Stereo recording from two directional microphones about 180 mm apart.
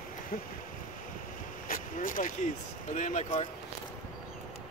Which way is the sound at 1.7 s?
50° left (ahead or behind).